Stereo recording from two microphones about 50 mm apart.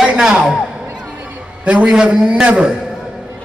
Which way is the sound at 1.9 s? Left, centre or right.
Centre.